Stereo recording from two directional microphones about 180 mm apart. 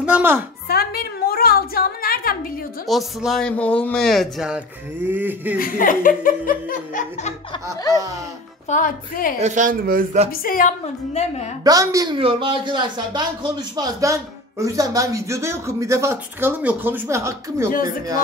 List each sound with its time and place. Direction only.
0.0 s a woman's voice: 10° right (ahead or behind)
0.7 s a sound: 60° left (ahead or behind)
2.9 s speech: centre (ahead or behind)
5.6 s laughter: 50° left (ahead or behind)
8.6 s laughter: 45° left (ahead or behind)
9.4 s speech: 45° right (ahead or behind)
10.4 s laughter: 50° left (ahead or behind)
11.6 s speech: 20° right (ahead or behind)